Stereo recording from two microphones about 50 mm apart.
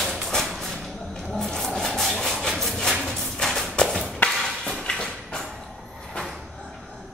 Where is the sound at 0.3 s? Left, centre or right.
Centre.